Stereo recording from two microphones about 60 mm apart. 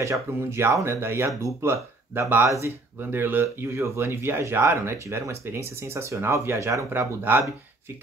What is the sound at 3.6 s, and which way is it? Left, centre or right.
Speech, right.